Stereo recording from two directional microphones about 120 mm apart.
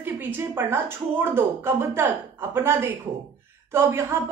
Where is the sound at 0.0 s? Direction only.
15° right (ahead or behind).